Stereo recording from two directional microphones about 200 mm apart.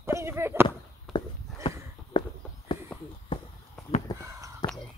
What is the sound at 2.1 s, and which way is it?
Walk, 25° left (ahead or behind).